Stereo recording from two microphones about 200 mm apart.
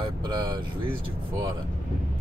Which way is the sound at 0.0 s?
20° right (ahead or behind).